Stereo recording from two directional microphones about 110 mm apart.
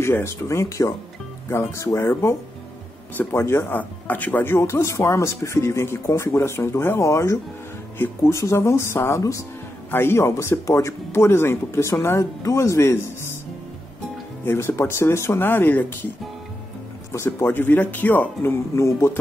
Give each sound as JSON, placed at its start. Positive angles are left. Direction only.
{"t": 0.0, "sound": "speech", "side_deg": 25}
{"t": 14.4, "sound": "speech", "side_deg": 20}
{"t": 17.1, "sound": "speech", "side_deg": 25}